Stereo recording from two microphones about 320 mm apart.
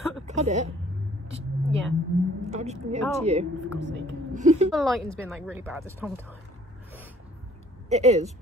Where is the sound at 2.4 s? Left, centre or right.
Right.